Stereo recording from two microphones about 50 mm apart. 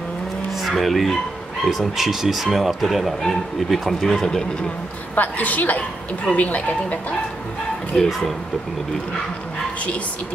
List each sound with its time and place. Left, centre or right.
0.7 s speech: centre
5.1 s a woman's voice: left
7.9 s speech: centre